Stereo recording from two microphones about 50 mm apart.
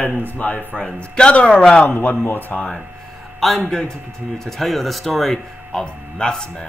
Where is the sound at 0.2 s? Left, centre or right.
Left.